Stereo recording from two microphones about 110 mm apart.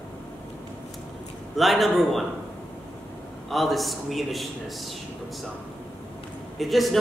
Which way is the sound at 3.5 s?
Centre (ahead or behind).